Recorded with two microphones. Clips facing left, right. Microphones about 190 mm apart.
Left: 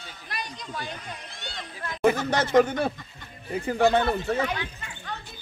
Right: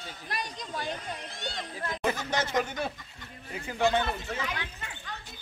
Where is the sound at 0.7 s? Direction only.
35° right (ahead or behind).